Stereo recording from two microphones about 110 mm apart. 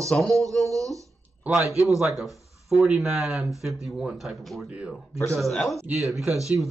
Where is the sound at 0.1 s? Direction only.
Centre (ahead or behind).